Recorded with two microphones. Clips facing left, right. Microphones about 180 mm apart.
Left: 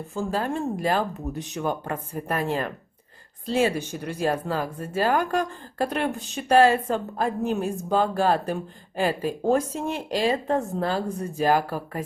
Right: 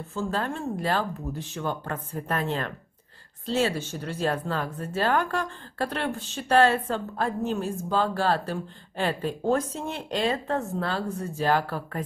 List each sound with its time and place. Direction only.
0.1 s speech: 10° left (ahead or behind)